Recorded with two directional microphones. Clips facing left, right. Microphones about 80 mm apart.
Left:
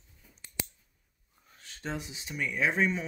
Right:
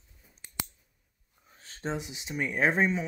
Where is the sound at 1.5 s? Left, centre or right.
Right.